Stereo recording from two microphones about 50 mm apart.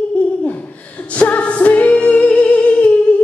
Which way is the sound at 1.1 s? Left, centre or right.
Left.